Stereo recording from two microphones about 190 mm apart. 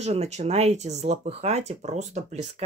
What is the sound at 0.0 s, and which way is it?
Speech, 35° right (ahead or behind).